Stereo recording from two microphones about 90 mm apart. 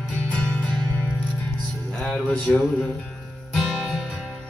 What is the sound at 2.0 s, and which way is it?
Music, 15° left (ahead or behind).